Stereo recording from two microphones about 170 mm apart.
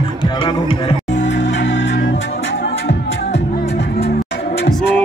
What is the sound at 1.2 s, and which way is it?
Music, 90° left.